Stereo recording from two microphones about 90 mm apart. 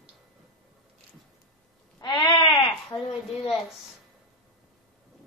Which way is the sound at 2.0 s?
50° left (ahead or behind).